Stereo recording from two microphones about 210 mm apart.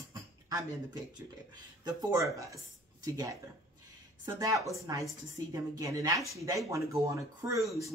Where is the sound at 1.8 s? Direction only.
15° right (ahead or behind).